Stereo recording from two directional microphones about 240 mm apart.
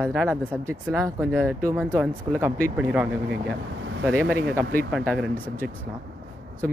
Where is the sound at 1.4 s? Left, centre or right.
Centre.